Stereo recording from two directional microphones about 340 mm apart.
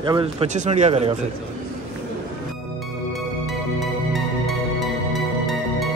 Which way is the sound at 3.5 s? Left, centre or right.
Centre.